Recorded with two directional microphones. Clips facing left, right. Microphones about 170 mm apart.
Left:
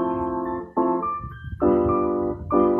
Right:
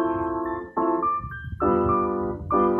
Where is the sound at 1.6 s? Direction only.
25° left (ahead or behind).